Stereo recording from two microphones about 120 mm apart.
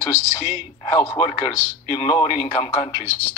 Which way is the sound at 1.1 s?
70° left (ahead or behind).